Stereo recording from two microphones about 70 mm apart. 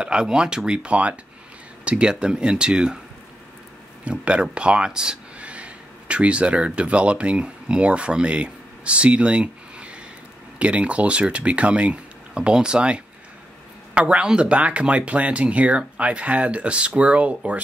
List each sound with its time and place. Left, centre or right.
0.0 s speech: centre
4.0 s speech: centre